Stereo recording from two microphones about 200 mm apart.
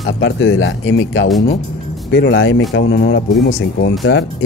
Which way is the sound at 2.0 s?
60° left (ahead or behind).